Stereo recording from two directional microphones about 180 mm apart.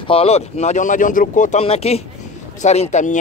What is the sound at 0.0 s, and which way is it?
Speech, 30° left (ahead or behind).